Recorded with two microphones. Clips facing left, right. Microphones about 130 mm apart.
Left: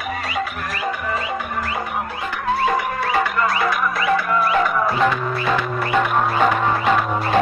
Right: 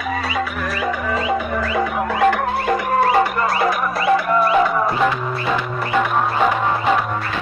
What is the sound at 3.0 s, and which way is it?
Music, 35° right (ahead or behind).